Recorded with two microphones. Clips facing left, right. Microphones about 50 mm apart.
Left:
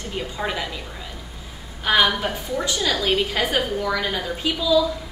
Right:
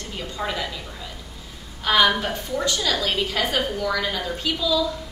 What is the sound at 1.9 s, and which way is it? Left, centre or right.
A woman's voice, centre.